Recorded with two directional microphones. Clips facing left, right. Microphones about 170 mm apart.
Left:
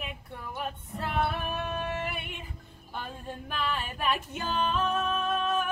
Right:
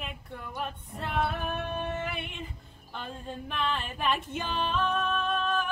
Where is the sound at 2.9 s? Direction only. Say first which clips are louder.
Even; 5° left (ahead or behind).